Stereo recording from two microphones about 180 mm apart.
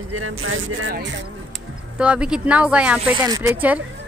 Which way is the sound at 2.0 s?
5° right (ahead or behind).